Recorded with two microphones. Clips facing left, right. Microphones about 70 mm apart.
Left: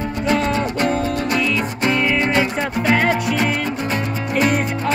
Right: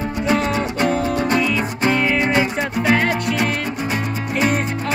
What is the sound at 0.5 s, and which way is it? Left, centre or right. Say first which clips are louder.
Music: even; centre.